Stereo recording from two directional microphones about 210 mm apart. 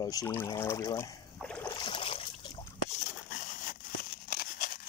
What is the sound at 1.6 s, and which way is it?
Boat, 20° left (ahead or behind).